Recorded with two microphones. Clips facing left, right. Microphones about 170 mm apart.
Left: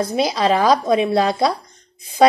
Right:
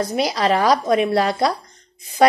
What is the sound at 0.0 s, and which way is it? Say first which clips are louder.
A woman's voice: left 1 dB; 20° left (ahead or behind).